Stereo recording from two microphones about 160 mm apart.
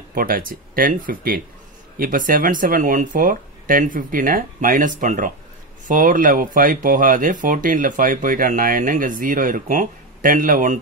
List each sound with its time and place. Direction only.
0.1 s speech: 60° right (ahead or behind)